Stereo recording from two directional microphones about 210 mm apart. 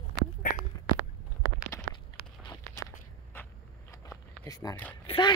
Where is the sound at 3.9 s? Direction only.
15° left (ahead or behind).